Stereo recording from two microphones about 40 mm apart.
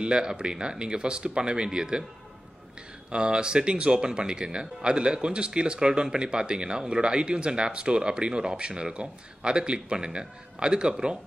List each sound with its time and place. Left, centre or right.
0.0 s speech: right
3.1 s speech: right